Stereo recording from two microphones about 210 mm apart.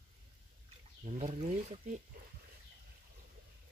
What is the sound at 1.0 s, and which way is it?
Speech, 30° right (ahead or behind).